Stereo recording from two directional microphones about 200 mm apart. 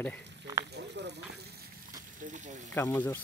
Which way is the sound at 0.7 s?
60° right (ahead or behind).